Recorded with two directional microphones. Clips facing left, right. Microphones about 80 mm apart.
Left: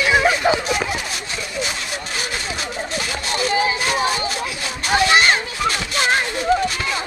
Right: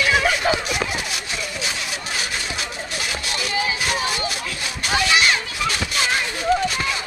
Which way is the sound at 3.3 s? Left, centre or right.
Left.